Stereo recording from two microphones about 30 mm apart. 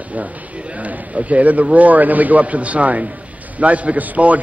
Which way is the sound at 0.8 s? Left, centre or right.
Right.